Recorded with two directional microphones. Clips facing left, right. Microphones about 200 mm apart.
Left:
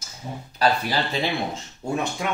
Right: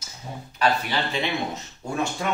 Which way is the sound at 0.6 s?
35° left (ahead or behind).